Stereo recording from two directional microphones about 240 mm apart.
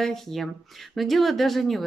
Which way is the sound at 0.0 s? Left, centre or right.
Centre.